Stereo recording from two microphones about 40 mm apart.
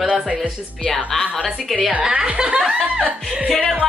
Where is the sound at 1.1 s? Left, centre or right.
Centre.